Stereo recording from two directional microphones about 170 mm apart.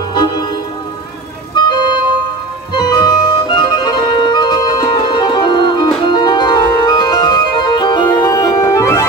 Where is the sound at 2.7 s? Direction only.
25° left (ahead or behind).